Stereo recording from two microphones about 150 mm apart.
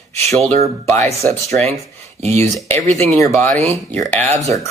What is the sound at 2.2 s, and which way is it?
Speech, 45° right (ahead or behind).